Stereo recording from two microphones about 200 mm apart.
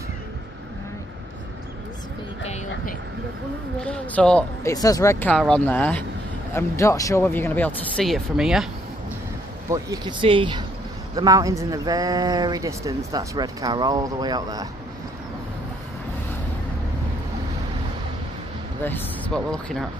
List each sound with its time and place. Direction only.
2.4 s vehicle: 35° left (ahead or behind)
3.8 s speech: 5° left (ahead or behind)
4.7 s speech: 20° left (ahead or behind); by 8.6 s centre (ahead or behind)
9.7 s speech: 20° right (ahead or behind)
18.9 s speech: 10° left (ahead or behind)